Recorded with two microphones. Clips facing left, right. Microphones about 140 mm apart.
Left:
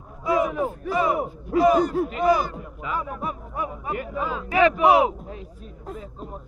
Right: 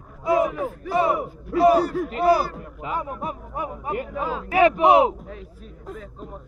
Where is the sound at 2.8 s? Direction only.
25° right (ahead or behind).